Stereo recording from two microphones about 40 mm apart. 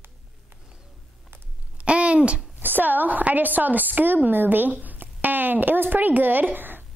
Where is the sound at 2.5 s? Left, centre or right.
Right.